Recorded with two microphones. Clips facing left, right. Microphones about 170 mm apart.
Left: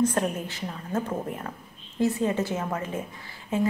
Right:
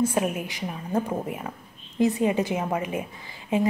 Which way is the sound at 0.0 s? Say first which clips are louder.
Right 1 dB; 10° right (ahead or behind).